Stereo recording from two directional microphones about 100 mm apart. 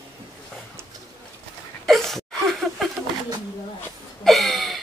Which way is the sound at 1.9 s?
Centre (ahead or behind).